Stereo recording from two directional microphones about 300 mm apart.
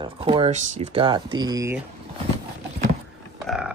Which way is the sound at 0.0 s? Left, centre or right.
Centre.